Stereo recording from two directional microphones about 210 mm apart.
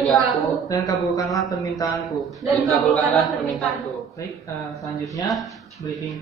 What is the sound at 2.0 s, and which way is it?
A woman's voice, centre (ahead or behind).